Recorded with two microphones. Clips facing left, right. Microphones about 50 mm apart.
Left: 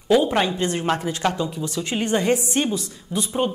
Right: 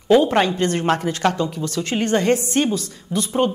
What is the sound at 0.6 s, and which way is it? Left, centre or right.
A woman's voice, right.